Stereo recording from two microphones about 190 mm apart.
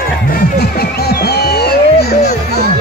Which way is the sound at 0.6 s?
60° left (ahead or behind).